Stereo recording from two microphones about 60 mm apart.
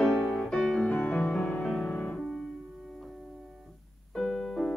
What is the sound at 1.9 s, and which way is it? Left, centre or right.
Piano, left.